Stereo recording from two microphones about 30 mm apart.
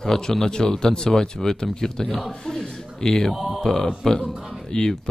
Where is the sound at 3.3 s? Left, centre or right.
Centre.